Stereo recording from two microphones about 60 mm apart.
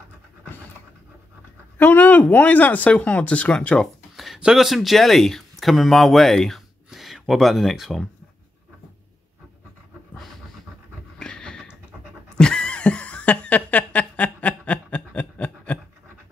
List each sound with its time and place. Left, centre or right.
1.8 s speech: left
3.8 s a sound: centre
4.4 s speech: centre
6.9 s speech: centre
11.1 s a sound: centre
12.4 s snicker: centre